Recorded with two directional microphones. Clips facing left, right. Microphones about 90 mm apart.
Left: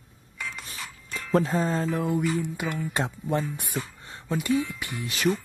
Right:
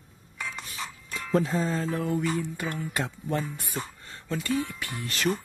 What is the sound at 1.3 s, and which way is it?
Speech, 40° left (ahead or behind).